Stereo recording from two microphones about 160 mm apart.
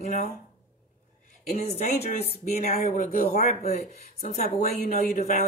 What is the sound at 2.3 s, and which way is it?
Speech, 60° left (ahead or behind).